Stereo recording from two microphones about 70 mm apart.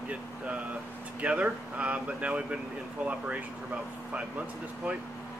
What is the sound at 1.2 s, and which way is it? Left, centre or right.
Speech, centre.